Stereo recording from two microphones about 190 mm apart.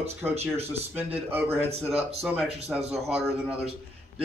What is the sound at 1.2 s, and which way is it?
A man's voice, 10° right (ahead or behind).